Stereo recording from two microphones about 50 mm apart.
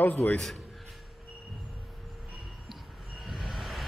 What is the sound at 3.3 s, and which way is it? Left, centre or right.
Vehicle, centre.